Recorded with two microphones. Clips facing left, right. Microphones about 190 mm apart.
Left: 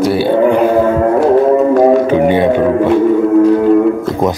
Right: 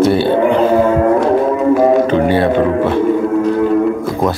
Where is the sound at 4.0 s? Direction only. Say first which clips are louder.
Left 2 dB; 20° left (ahead or behind).